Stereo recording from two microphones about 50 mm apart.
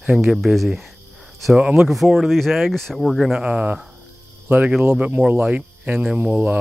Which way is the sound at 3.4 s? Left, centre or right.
Right.